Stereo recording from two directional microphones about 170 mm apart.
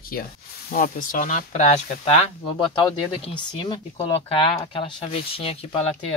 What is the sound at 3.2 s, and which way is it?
Speech, 30° left (ahead or behind).